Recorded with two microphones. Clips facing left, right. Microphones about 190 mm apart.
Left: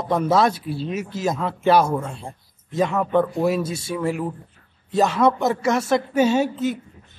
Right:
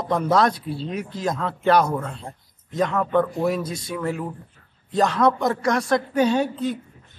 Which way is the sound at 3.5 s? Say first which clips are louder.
Left 3 dB; 25° left (ahead or behind).